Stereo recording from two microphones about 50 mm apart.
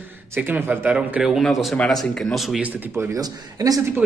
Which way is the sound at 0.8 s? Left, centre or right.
Right.